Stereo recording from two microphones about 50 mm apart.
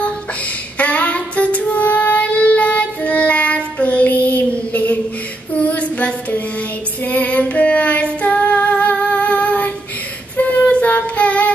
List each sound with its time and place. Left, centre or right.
0.7 s child singing: left
7.1 s female singing: left
10.3 s child singing: left